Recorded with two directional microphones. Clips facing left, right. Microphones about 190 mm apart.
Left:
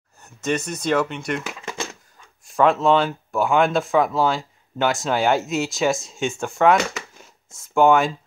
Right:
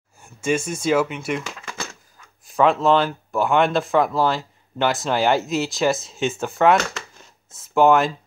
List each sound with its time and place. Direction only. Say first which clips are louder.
0.2 s speech: right 2 dB; 10° right (ahead or behind)
1.5 s typewriter: left 3 dB; 20° left (ahead or behind)
2.4 s speech: even; centre (ahead or behind)